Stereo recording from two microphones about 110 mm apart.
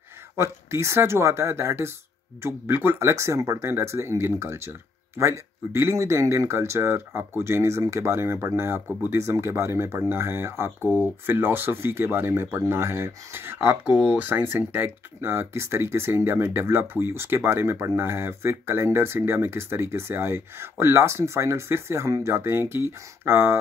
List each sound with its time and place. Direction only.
0.4 s speech: 25° right (ahead or behind)